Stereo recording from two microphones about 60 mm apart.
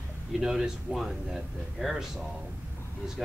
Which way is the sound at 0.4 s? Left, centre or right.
Centre.